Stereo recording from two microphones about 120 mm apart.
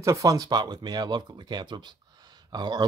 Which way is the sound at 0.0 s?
25° right (ahead or behind).